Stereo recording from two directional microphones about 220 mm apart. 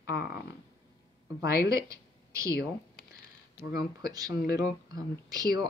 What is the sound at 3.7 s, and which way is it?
Speech, 15° right (ahead or behind).